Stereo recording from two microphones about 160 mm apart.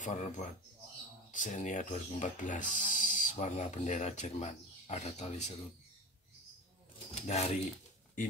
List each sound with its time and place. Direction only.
0.0 s speech: 50° left (ahead or behind)
7.2 s speech: 45° left (ahead or behind)